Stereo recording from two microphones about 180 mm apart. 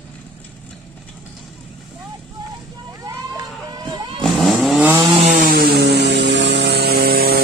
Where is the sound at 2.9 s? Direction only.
20° right (ahead or behind).